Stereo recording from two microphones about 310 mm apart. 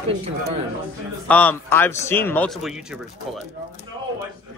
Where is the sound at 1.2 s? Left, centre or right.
Centre.